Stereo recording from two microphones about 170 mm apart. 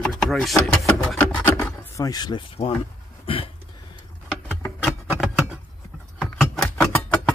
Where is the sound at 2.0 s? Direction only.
20° left (ahead or behind).